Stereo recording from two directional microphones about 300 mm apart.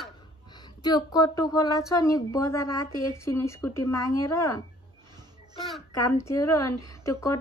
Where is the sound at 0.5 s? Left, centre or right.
Centre.